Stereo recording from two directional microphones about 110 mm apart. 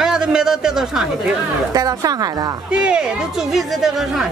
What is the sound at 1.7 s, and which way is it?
Speech, 35° right (ahead or behind).